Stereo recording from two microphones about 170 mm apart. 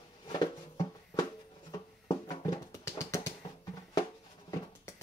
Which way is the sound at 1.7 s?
20° left (ahead or behind).